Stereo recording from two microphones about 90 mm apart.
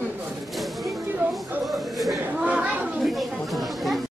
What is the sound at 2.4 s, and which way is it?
Chatter, 15° right (ahead or behind).